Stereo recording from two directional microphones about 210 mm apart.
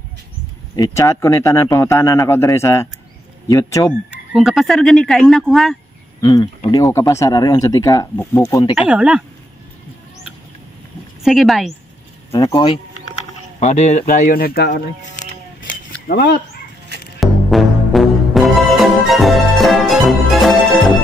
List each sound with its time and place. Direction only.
0.7 s speech: 15° left (ahead or behind)
4.1 s speech: 5° right (ahead or behind)
6.2 s speech: 20° left (ahead or behind)
8.7 s speech: 5° right (ahead or behind)
11.2 s speech: centre (ahead or behind)
12.3 s speech: 20° left (ahead or behind); by 14.8 s 45° left (ahead or behind)
16.1 s speech: 45° left (ahead or behind)
17.2 s music: centre (ahead or behind)